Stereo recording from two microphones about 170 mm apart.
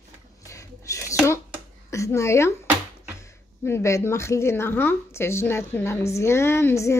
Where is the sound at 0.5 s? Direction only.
20° left (ahead or behind).